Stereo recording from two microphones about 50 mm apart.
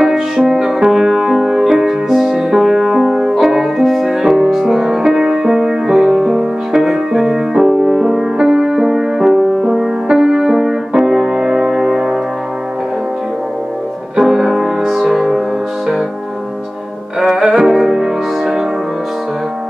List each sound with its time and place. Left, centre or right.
0.0 s music: centre
14.1 s music: centre
17.2 s music: centre